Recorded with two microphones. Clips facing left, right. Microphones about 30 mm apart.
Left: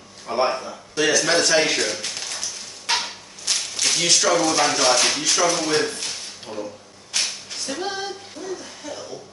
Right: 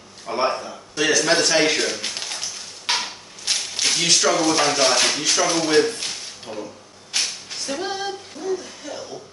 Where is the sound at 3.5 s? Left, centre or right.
Centre.